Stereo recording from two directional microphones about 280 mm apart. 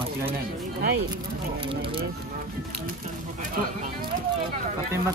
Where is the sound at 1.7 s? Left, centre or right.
Centre.